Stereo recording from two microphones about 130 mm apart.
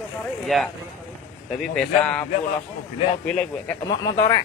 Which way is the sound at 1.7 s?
10° left (ahead or behind).